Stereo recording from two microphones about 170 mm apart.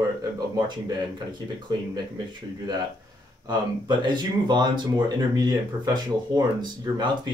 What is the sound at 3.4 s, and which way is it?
Speech, 25° right (ahead or behind).